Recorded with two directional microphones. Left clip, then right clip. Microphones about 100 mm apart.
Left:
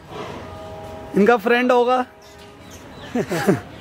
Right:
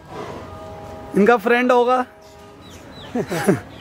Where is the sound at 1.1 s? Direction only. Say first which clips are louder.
Right 1 dB; 5° right (ahead or behind).